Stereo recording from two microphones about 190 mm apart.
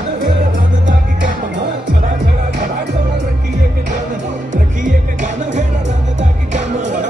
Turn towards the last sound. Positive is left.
turn(degrees=-40)  # may be behind; listen again after turning